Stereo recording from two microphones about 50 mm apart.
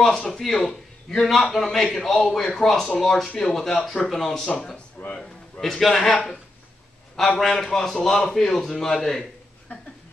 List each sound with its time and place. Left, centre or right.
0.0 s a man's voice: centre
4.7 s speech: left
5.2 s a man's voice: centre
7.3 s a man's voice: centre